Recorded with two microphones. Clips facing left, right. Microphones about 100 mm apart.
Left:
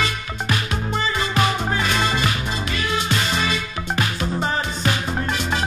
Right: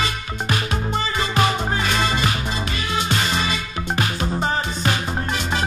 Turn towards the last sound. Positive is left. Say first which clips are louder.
# even
turn(degrees=-35)  # may be behind; listen again after turning